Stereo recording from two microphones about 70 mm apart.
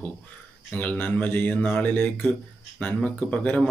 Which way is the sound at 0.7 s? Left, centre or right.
Left.